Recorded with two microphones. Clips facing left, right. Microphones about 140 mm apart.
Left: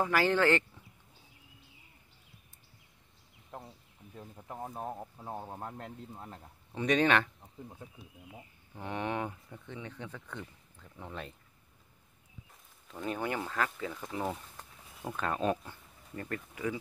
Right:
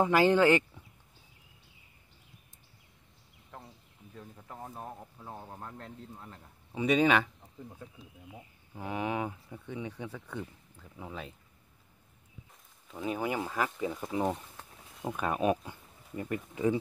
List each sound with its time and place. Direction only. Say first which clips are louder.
0.0 s speech: right 4 dB; 20° right (ahead or behind)
4.1 s speech: left 2 dB; 15° left (ahead or behind)
6.7 s speech: right 2 dB; 10° right (ahead or behind)
8.7 s speech: right 2 dB; 5° right (ahead or behind)
12.8 s speech: right 2 dB; 5° right (ahead or behind)
16.5 s speech: right 8 dB; 25° right (ahead or behind)